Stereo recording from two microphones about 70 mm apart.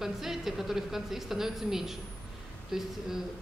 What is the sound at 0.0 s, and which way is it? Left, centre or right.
A woman's voice, centre.